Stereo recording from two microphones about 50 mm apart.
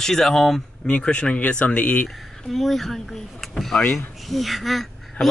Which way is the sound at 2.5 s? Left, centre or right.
Centre.